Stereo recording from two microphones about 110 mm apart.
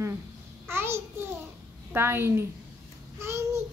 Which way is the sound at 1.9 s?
20° right (ahead or behind).